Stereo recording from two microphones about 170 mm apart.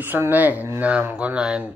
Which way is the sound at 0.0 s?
10° right (ahead or behind).